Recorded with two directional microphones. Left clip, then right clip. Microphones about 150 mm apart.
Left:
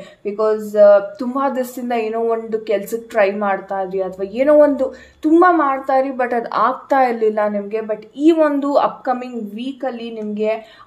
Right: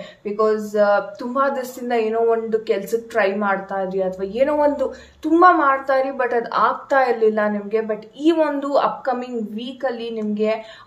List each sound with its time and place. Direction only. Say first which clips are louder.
0.2 s a woman's voice: left 1 dB; 25° left (ahead or behind)